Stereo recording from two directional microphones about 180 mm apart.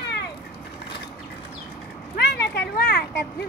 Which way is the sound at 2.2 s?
65° left (ahead or behind).